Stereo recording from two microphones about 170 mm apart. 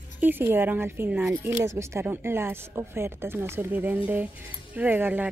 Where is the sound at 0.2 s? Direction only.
10° right (ahead or behind).